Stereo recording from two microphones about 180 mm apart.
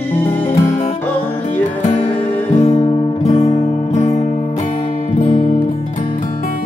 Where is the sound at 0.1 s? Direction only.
10° left (ahead or behind).